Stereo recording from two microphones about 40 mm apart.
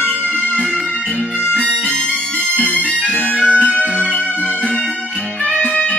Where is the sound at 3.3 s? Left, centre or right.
Right.